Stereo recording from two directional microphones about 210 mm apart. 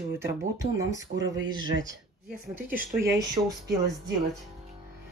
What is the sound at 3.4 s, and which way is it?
Speech, 20° right (ahead or behind).